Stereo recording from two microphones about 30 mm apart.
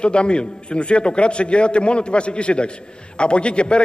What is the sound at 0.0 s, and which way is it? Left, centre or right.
A man's voice, left.